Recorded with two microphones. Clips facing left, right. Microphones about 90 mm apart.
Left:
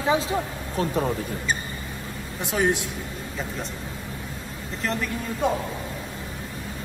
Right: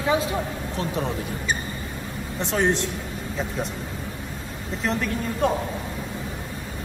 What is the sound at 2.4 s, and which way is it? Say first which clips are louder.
Speech: right 1 dB; 5° left (ahead or behind).